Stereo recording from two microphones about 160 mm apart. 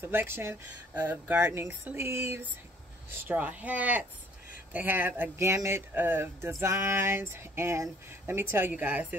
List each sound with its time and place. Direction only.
0.0 s speech: 15° right (ahead or behind)